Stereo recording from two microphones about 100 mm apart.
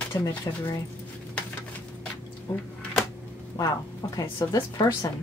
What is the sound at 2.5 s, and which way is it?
Speech, 25° left (ahead or behind).